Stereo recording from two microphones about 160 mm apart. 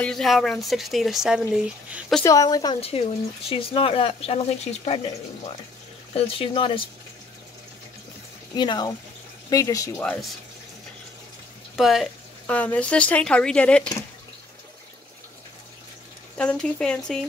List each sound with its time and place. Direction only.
0.0 s speech: centre (ahead or behind)
2.2 s speech: 20° left (ahead or behind)
2.8 s speech: 35° left (ahead or behind)
6.1 s speech: 35° left (ahead or behind)
8.5 s speech: 25° left (ahead or behind)
11.7 s speech: centre (ahead or behind)
12.4 s speech: 10° left (ahead or behind)
16.3 s speech: 5° left (ahead or behind)